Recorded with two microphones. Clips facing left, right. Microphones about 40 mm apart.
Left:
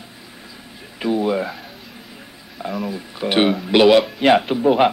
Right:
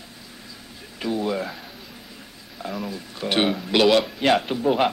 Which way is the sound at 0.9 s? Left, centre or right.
Centre.